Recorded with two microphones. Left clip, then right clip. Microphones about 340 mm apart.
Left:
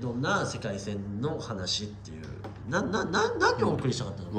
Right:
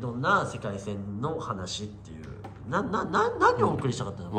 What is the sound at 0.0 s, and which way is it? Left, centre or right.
A man's voice, centre.